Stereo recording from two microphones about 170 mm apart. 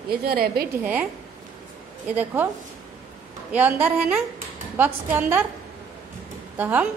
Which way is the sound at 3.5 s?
10° right (ahead or behind).